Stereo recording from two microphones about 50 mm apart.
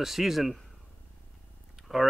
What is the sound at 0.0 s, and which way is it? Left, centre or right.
Speech, centre.